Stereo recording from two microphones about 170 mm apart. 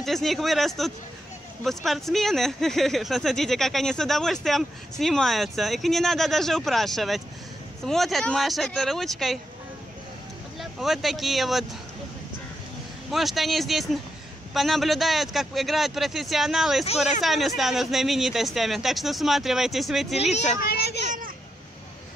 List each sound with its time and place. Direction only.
0.0 s speech: centre (ahead or behind)
10.6 s speech: centre (ahead or behind)
13.1 s speech: centre (ahead or behind)
20.2 s speech: 40° left (ahead or behind)
20.6 s speech: 70° left (ahead or behind)